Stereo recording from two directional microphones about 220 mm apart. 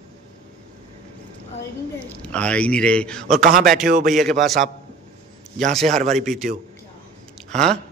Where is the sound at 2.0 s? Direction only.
5° left (ahead or behind).